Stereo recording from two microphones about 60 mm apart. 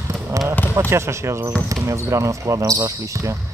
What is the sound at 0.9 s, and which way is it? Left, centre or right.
Speech, right.